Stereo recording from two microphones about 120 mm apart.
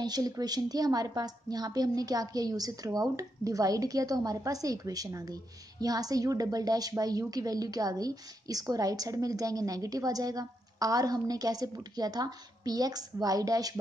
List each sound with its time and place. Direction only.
0.0 s a woman's voice: 35° right (ahead or behind)